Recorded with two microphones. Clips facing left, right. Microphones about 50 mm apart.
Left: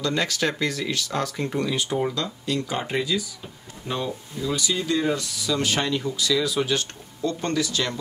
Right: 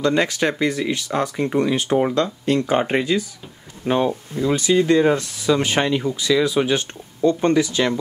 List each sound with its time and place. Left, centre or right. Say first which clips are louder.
0.0 s speech: right 6 dB; right